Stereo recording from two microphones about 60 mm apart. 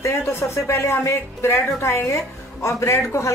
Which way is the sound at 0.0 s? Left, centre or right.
Left.